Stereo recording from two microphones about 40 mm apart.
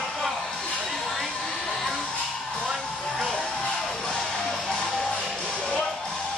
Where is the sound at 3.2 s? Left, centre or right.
Centre.